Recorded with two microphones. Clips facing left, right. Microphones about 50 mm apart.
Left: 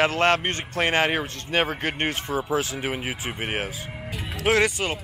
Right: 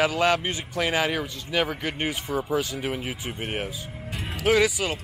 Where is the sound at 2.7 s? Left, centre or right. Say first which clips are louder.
Left 1 dB; left.